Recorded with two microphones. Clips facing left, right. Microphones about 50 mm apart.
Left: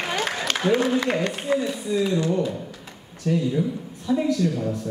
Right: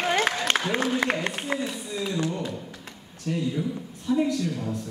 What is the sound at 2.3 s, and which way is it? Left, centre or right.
A man's voice, left.